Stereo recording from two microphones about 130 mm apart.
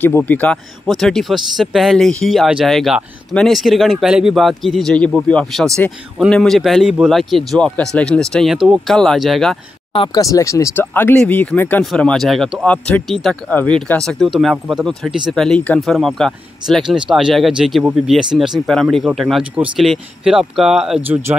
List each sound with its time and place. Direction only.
0.0 s speech: 15° left (ahead or behind)
10.1 s speech: 25° left (ahead or behind)
11.8 s speech: 5° left (ahead or behind)